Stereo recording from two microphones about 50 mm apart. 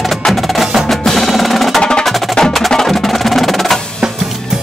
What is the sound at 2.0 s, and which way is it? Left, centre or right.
Wood block, centre.